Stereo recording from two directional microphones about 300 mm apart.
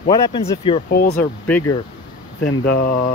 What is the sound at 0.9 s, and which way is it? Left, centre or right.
Speech, left.